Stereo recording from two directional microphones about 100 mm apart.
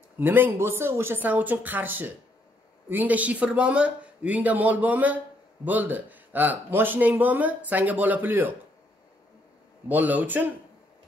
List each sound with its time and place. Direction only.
0.2 s speech: 20° right (ahead or behind)
9.8 s speech: 15° right (ahead or behind)